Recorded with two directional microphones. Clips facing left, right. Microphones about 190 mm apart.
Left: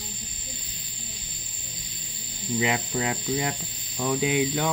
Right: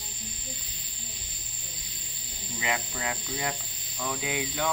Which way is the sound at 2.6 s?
25° left (ahead or behind).